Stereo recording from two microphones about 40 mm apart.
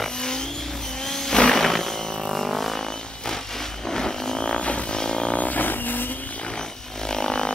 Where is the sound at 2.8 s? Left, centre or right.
Centre; by 4.9 s left.